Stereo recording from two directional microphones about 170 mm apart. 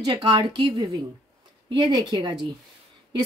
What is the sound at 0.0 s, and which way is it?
A woman's voice, 25° right (ahead or behind).